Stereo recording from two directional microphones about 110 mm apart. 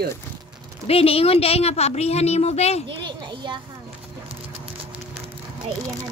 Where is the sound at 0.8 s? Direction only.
60° left (ahead or behind).